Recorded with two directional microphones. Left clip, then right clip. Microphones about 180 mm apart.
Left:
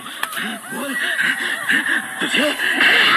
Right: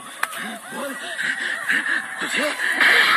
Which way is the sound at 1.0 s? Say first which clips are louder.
Left 6 dB; 15° left (ahead or behind).